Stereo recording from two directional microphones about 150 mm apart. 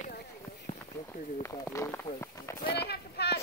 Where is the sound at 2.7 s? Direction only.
90° left.